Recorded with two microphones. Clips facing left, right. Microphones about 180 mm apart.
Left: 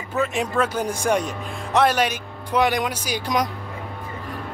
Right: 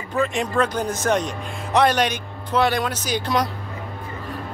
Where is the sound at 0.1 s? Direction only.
5° left (ahead or behind).